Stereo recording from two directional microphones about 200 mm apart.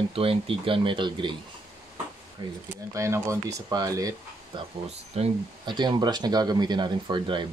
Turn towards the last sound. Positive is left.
turn(degrees=-25)  # may be behind; listen again after turning